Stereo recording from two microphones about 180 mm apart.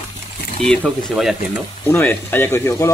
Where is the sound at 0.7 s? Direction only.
5° left (ahead or behind).